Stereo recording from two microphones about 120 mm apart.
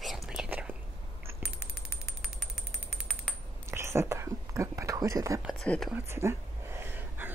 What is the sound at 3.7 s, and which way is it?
Whispering, 20° right (ahead or behind).